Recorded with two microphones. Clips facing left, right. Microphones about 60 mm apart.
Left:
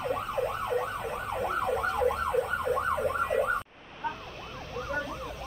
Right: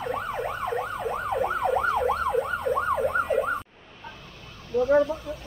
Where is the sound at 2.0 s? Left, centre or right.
Right.